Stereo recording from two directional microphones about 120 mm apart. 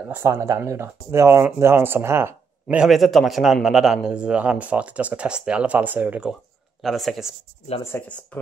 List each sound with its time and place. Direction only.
0.1 s speech: 20° right (ahead or behind)
2.8 s speech: centre (ahead or behind)
6.8 s speech: centre (ahead or behind)
7.9 s speech: 20° left (ahead or behind)